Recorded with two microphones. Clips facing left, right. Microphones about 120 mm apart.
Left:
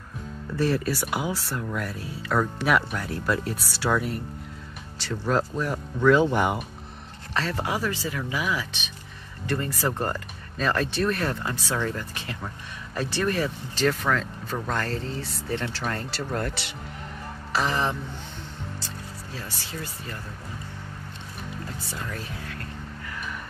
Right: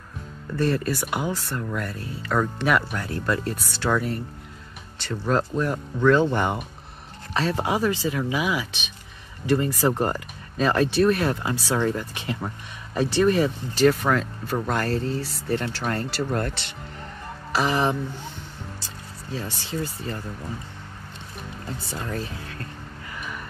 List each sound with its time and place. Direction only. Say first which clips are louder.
0.6 s speech: right 1 dB; 5° left (ahead or behind)
7.3 s speech: right 4 dB; 20° right (ahead or behind)
19.3 s speech: right 8 dB; 25° right (ahead or behind)
22.0 s speech: right 6 dB; 30° right (ahead or behind)